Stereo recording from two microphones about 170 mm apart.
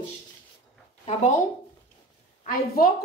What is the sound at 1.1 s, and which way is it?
Speech, 45° left (ahead or behind).